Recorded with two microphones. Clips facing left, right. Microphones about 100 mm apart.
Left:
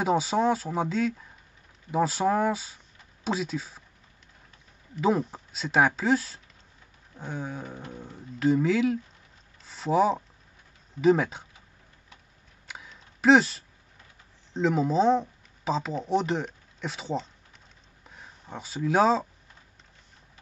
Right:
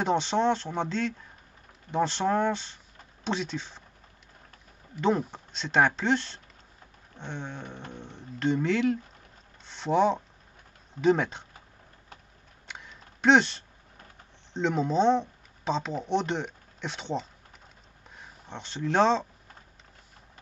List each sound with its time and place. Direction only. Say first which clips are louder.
0.0 s speech: left 1 dB; 5° left (ahead or behind)
4.9 s speech: left 1 dB; 5° left (ahead or behind)
12.6 s a sound: even; 5° left (ahead or behind)
14.5 s speech: left 2 dB; centre (ahead or behind)